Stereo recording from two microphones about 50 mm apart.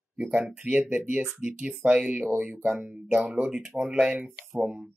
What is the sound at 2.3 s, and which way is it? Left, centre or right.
Speech, right.